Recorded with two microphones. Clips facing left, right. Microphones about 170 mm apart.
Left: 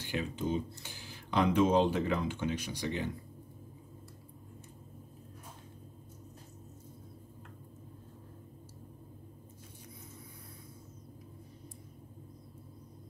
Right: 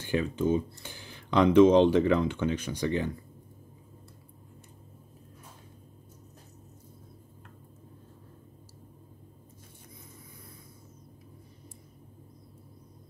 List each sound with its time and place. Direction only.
0.0 s speech: 50° right (ahead or behind); by 2.2 s 80° right
2.6 s speech: 50° right (ahead or behind)